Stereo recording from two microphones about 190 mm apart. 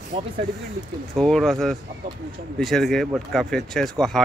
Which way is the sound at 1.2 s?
Centre (ahead or behind).